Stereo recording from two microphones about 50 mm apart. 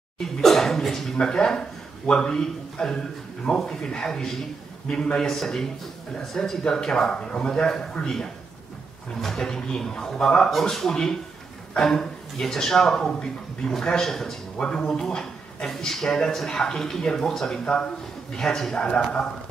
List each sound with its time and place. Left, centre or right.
0.2 s a man's voice: centre
4.8 s a man's voice: left
5.2 s a man's voice: centre